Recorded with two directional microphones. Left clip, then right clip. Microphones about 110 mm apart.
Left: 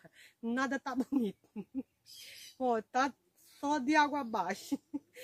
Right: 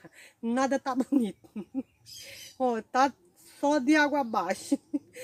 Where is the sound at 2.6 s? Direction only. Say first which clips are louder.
Right 6 dB; 25° left (ahead or behind).